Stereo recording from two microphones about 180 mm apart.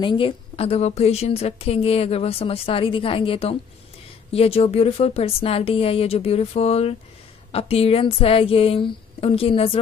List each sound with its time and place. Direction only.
0.0 s a woman's voice: 30° left (ahead or behind)